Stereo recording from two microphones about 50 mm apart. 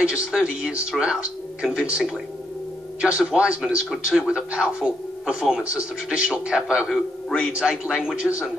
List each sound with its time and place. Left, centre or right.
0.0 s a man's voice: centre
3.6 s a man's voice: centre